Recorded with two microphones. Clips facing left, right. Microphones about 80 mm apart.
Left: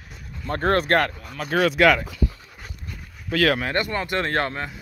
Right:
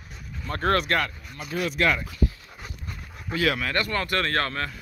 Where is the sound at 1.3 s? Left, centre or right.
Left.